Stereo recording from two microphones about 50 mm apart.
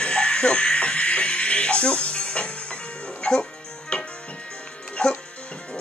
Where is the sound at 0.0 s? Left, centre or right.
Centre.